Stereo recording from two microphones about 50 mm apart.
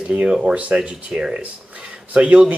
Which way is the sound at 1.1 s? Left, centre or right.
Right.